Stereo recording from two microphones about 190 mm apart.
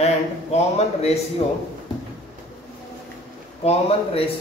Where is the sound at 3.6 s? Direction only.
30° left (ahead or behind).